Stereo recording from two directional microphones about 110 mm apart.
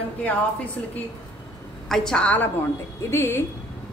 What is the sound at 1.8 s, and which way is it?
A woman's voice, 5° left (ahead or behind).